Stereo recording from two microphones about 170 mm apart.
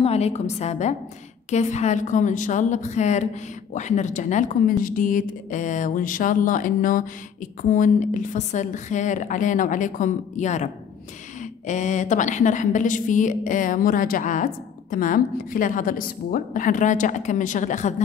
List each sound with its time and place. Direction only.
0.0 s a woman's voice: 40° left (ahead or behind)